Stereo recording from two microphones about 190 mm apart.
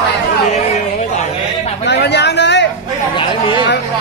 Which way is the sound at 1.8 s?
65° left (ahead or behind).